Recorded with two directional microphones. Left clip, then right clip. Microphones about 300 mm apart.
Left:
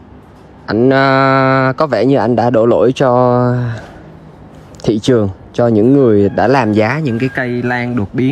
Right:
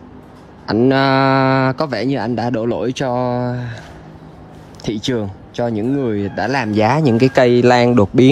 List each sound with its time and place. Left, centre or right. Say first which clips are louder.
0.7 s speech: left 4 dB; centre
3.1 s speech: left 8 dB; right
4.8 s speech: left 8 dB; centre
5.1 s speech: left 9 dB; right
6.6 s speech: left 1 dB; centre; by 8.0 s right